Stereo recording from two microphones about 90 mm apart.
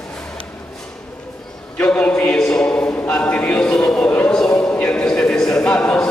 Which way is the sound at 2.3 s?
5° left (ahead or behind).